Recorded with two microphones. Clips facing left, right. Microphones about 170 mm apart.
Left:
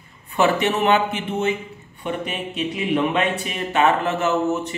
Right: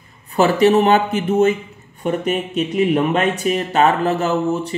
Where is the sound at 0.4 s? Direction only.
35° right (ahead or behind).